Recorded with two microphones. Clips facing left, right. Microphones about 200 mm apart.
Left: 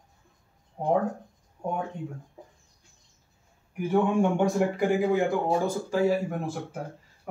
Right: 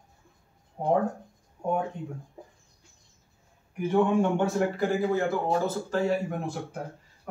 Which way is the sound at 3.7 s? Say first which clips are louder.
Right 1 dB; 10° left (ahead or behind).